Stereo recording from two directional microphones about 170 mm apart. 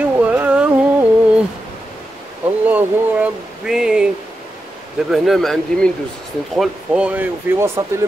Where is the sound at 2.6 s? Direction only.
10° right (ahead or behind).